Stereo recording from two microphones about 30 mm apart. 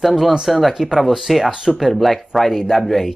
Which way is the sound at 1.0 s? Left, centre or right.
Centre.